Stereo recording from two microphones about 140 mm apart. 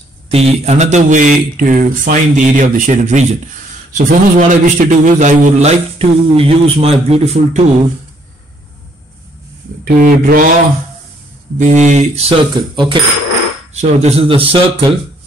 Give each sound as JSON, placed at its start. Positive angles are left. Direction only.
{"t": 0.3, "sound": "speech", "side_deg": -50}
{"t": 3.9, "sound": "a man's voice", "side_deg": -70}
{"t": 9.9, "sound": "mantra", "side_deg": -75}
{"t": 11.5, "sound": "a man's voice", "side_deg": -60}
{"t": 13.7, "sound": "a man's voice", "side_deg": -55}